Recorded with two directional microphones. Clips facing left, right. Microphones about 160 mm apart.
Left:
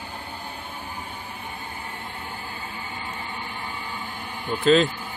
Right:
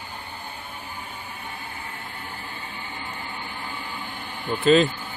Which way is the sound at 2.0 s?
25° left (ahead or behind).